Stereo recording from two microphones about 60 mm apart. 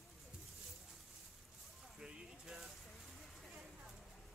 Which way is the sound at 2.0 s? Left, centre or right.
Centre.